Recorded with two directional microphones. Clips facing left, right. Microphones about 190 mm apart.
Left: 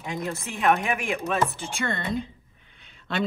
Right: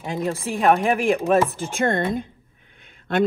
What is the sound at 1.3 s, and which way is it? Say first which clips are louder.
Speech: right 7 dB; 50° right (ahead or behind).